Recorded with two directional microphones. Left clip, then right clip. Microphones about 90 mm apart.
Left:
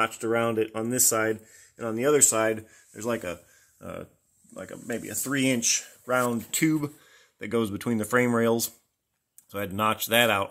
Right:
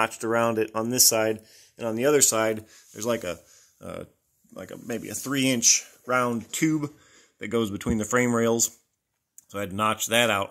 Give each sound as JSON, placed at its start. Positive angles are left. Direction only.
{"t": 0.0, "sound": "speech", "side_deg": -20}